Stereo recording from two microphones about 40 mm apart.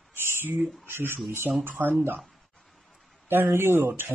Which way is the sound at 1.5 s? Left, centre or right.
Right.